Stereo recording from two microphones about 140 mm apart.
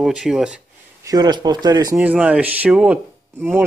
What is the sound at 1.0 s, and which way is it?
Speech, 30° right (ahead or behind).